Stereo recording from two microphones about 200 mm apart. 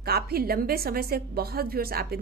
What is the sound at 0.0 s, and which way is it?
Speech, 50° right (ahead or behind).